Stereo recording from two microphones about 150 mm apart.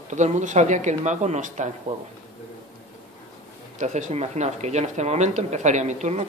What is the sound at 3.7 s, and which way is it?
Speech, 55° right (ahead or behind).